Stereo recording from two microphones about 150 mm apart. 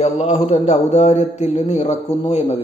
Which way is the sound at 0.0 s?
40° left (ahead or behind).